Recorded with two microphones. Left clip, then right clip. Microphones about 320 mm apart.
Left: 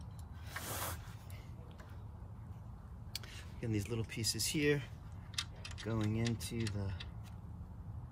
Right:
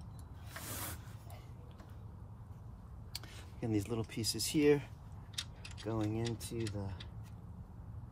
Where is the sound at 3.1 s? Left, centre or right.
Centre.